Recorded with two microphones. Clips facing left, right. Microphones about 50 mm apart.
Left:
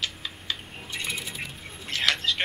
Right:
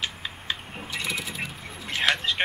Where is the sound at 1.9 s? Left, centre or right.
Centre.